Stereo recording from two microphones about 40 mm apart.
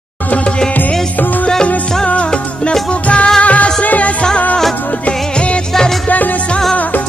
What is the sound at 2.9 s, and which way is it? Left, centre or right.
Music, left.